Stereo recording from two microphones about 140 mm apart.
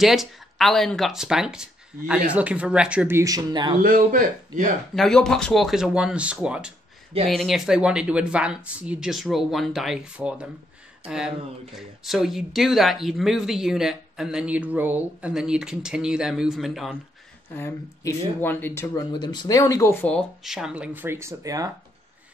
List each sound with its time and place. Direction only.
0.0 s speech: centre (ahead or behind); by 3.7 s 30° right (ahead or behind)
3.8 s speech: 85° right
4.9 s speech: 5° left (ahead or behind)
17.6 s speech: 15° left (ahead or behind)
18.9 s speech: 30° left (ahead or behind); by 20.2 s 10° left (ahead or behind)
20.4 s speech: 5° right (ahead or behind); by 21.7 s 25° right (ahead or behind)